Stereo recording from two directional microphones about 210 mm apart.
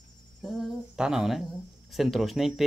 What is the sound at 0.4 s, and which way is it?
Speech, centre (ahead or behind).